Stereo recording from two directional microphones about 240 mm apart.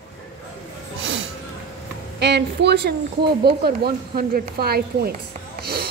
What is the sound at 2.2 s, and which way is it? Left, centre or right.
A woman's voice, right.